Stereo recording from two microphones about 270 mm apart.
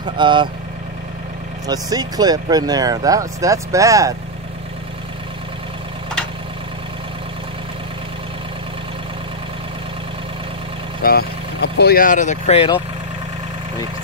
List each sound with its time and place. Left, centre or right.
0.0 s speech: centre
1.7 s speech: centre
11.0 s speech: left